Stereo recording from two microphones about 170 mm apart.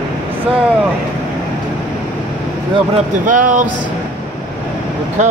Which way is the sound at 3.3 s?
50° right (ahead or behind).